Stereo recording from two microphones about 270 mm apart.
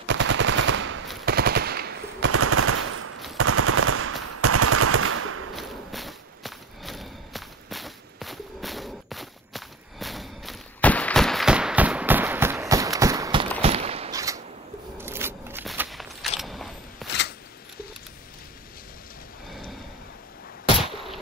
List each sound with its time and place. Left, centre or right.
0.0 s machine gun: right
2.3 s machine gun: right
5.5 s walk: centre
13.6 s a sound: right; by 17.1 s centre